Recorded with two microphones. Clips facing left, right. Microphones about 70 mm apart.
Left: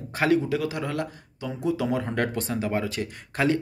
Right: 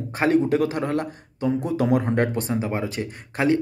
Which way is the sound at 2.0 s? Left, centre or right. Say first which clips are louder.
Right 4 dB; right.